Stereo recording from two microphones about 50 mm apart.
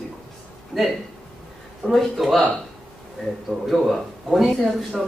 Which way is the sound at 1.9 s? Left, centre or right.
Centre.